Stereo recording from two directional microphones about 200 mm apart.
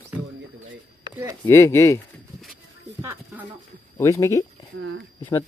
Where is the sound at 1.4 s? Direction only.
15° left (ahead or behind).